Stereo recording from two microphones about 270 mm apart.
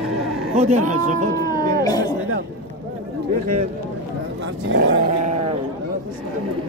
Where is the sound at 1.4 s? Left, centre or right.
Centre.